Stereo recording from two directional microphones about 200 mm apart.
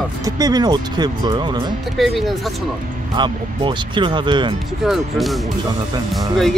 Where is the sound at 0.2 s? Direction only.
20° right (ahead or behind).